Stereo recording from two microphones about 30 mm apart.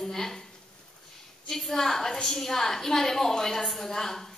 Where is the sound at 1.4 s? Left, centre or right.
Centre.